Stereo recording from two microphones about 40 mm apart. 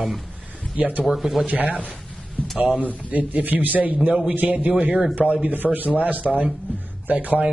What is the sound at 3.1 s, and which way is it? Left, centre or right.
Speech, right.